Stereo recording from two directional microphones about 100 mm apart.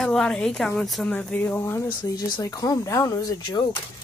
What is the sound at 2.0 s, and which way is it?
Speech, 40° left (ahead or behind).